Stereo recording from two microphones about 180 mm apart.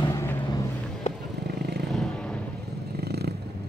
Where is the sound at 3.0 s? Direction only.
65° right (ahead or behind).